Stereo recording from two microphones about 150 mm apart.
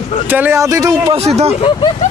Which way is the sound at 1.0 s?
45° right (ahead or behind).